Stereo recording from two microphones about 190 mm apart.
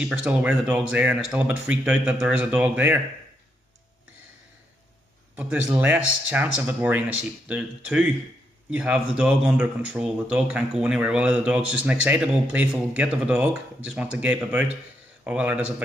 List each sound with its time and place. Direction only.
0.0 s speech: 5° right (ahead or behind)
5.3 s speech: 10° right (ahead or behind)